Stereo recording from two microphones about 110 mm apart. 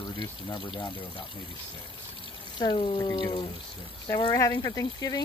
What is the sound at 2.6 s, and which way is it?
Speech, 50° left (ahead or behind).